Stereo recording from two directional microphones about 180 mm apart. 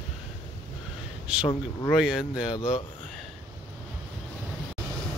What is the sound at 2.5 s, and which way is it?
Speech, 25° left (ahead or behind).